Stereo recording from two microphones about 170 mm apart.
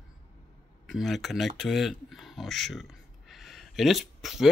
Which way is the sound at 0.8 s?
Centre (ahead or behind).